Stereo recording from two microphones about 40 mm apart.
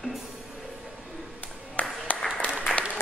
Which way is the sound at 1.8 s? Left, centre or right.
Left.